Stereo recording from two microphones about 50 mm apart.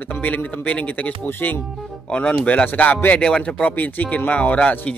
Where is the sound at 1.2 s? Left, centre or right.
Left.